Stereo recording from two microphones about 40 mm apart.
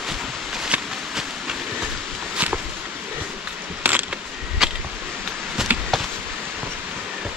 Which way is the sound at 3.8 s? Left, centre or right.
Right.